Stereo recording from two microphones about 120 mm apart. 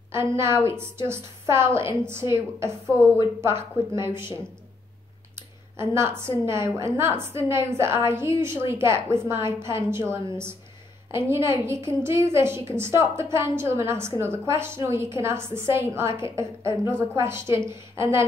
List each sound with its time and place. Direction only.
0.1 s a woman's voice: 20° right (ahead or behind)
5.8 s a woman's voice: 20° right (ahead or behind)